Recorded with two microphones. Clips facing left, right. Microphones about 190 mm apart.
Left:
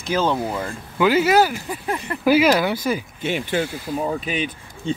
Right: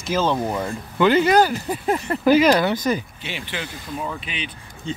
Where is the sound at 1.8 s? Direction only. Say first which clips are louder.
Right 4 dB; 25° right (ahead or behind).